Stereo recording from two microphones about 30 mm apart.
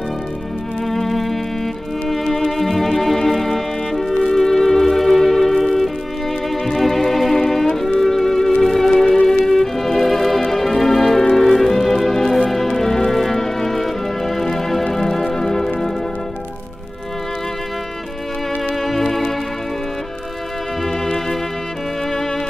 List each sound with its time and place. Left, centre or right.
0.8 s music: centre
9.5 s violin: centre
15.0 s music: centre
18.9 s music: centre